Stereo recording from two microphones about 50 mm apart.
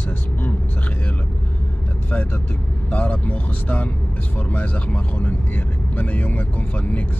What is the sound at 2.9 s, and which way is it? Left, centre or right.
Speech, left.